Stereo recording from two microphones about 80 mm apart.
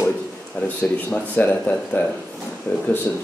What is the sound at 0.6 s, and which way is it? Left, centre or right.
Speech, centre.